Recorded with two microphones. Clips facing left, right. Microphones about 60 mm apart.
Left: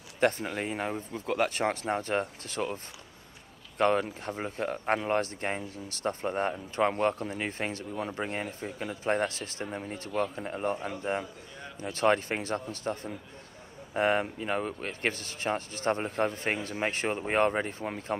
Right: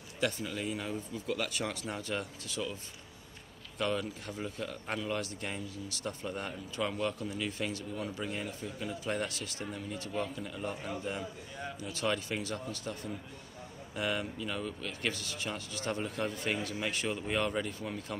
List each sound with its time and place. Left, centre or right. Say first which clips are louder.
0.2 s speech: left 6 dB; left